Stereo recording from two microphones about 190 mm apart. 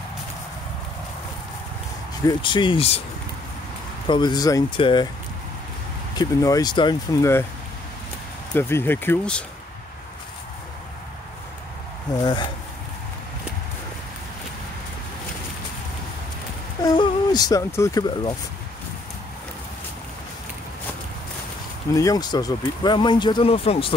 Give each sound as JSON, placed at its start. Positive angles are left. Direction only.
{"t": 2.2, "sound": "speech", "side_deg": 25}
{"t": 4.1, "sound": "speech", "side_deg": 20}
{"t": 6.1, "sound": "speech", "side_deg": 20}
{"t": 8.5, "sound": "speech", "side_deg": 10}
{"t": 12.1, "sound": "speech", "side_deg": 20}
{"t": 16.8, "sound": "speech", "side_deg": 20}
{"t": 21.9, "sound": "speech", "side_deg": 20}